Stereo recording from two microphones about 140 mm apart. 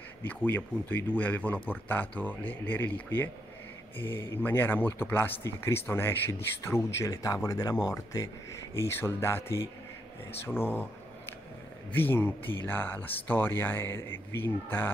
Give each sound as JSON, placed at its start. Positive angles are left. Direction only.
{"t": 0.2, "sound": "speech", "side_deg": 10}
{"t": 10.4, "sound": "a sound", "side_deg": 15}
{"t": 11.9, "sound": "speech", "side_deg": 15}